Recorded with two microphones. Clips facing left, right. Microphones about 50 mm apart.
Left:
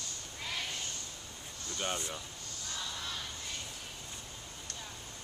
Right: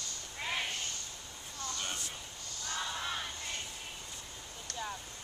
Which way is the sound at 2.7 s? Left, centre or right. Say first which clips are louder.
Right 4 dB; right.